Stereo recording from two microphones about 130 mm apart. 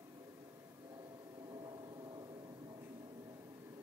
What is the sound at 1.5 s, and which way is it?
Vehicle, 30° right (ahead or behind).